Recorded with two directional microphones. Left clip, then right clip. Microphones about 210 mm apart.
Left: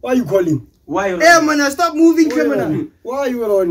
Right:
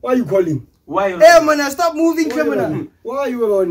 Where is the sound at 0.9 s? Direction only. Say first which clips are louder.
Right 2 dB; 5° right (ahead or behind).